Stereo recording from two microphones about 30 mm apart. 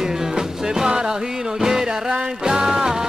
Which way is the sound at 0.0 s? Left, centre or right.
Centre.